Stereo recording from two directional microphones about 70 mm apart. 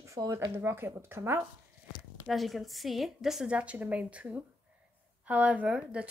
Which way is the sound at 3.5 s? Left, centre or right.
Centre.